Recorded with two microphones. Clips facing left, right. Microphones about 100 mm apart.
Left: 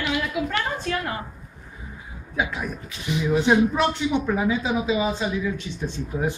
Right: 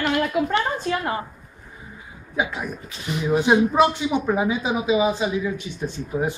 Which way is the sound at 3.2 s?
15° right (ahead or behind).